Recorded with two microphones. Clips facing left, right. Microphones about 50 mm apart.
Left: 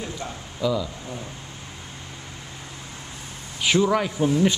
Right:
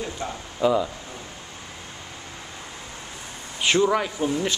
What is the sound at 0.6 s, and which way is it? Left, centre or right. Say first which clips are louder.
Speech: right 4 dB; right.